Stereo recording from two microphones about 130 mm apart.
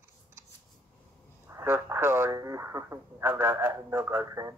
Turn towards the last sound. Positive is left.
turn(degrees=-25)  # may be behind; listen again after turning